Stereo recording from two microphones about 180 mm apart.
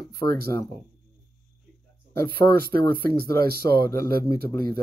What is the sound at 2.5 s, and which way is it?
Speech, 55° right (ahead or behind).